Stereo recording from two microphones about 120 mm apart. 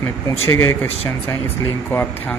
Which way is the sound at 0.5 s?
20° left (ahead or behind).